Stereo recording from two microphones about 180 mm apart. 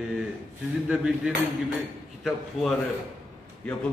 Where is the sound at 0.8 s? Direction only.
5° right (ahead or behind).